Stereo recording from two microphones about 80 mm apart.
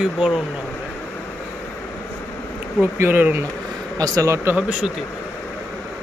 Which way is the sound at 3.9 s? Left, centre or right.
Right.